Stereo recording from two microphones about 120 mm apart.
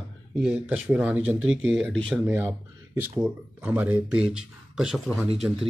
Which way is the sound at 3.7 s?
15° right (ahead or behind).